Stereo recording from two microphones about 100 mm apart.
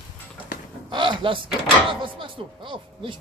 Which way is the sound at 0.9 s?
55° right (ahead or behind).